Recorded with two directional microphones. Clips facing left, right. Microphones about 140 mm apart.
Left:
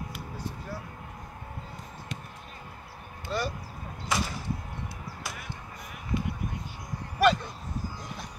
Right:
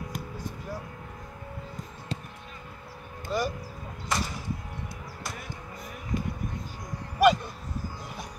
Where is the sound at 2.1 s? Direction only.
35° right (ahead or behind).